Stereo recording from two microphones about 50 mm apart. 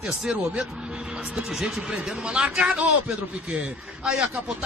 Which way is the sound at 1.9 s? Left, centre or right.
Right.